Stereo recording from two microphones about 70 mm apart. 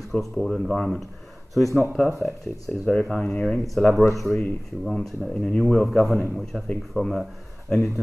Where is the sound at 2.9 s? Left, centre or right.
Centre.